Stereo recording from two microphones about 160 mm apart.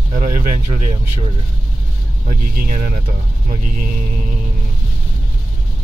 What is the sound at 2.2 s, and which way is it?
Speech, 55° right (ahead or behind).